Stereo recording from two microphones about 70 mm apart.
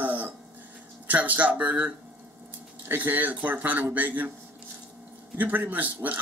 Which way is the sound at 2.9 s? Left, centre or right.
Right.